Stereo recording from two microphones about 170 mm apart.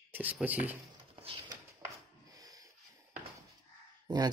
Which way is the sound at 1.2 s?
30° right (ahead or behind).